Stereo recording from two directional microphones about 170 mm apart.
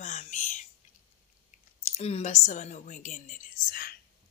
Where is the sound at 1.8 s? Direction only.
40° left (ahead or behind); by 3.9 s 60° left (ahead or behind).